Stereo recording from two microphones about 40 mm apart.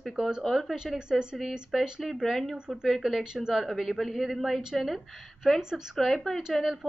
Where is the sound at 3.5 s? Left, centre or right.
Centre.